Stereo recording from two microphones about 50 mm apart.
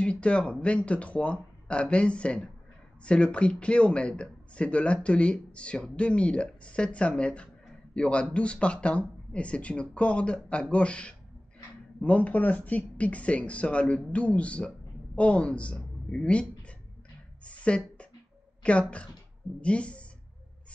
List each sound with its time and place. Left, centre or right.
0.0 s a man's voice: left
17.5 s a sound: left
18.6 s a man's voice: left